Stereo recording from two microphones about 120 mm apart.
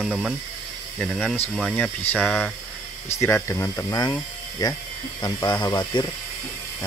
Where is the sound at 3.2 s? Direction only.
20° left (ahead or behind); by 6.1 s 35° left (ahead or behind).